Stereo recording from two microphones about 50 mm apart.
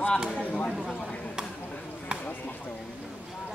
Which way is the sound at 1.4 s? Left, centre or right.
Centre.